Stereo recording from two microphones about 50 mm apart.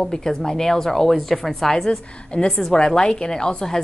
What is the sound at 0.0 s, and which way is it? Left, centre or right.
A woman's voice, centre.